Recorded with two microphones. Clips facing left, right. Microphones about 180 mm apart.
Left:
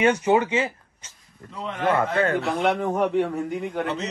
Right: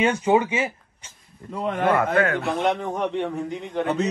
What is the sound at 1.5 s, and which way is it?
Speech, 55° right (ahead or behind).